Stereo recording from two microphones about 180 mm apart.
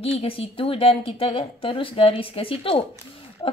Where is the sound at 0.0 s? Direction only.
35° left (ahead or behind).